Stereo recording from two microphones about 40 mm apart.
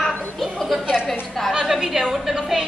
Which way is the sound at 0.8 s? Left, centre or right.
Right.